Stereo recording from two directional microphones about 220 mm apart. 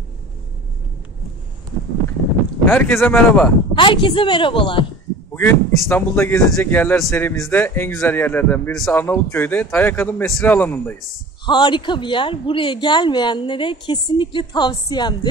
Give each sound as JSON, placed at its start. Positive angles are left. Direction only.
{"t": 2.6, "sound": "speech", "side_deg": 10}
{"t": 3.7, "sound": "speech", "side_deg": 20}
{"t": 5.3, "sound": "speech", "side_deg": 10}
{"t": 11.4, "sound": "speech", "side_deg": 20}